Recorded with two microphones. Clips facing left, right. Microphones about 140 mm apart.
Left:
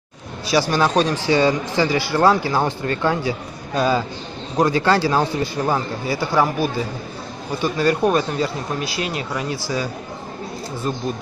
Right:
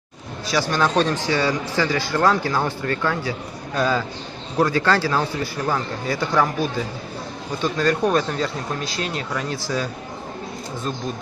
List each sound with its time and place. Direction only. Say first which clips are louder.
0.5 s speech: left 3 dB; 10° left (ahead or behind)
6.0 s speech: left 1 dB; 5° left (ahead or behind)